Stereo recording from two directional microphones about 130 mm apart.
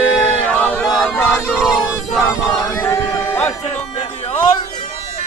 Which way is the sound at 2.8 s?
20° left (ahead or behind).